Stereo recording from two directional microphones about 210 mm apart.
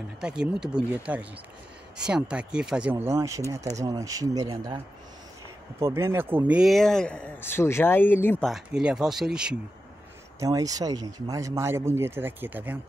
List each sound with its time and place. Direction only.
0.2 s speech: 5° right (ahead or behind)
8.5 s speech: centre (ahead or behind)
10.4 s speech: 15° right (ahead or behind)